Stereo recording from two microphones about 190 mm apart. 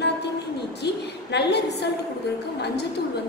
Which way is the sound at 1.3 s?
60° left (ahead or behind).